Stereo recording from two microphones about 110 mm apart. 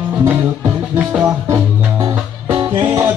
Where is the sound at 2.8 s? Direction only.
20° right (ahead or behind).